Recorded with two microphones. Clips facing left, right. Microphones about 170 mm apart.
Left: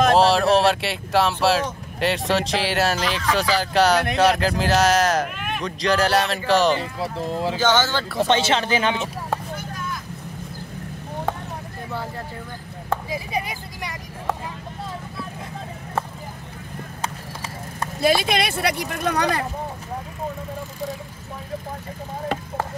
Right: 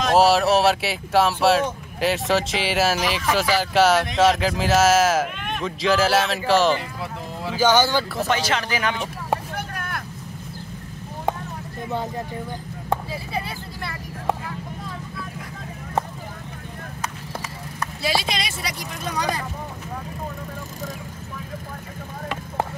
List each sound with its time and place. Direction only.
0.1 s speech: centre (ahead or behind)
6.8 s speech: 30° left (ahead or behind)
7.5 s speech: 10° right (ahead or behind)
8.3 s speech: 25° left (ahead or behind)
9.6 s vehicle: 65° right (ahead or behind)
13.1 s speech: 15° left (ahead or behind)
18.0 s speech: 55° left (ahead or behind)